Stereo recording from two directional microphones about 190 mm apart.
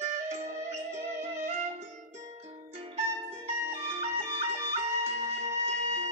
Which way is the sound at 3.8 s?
30° right (ahead or behind).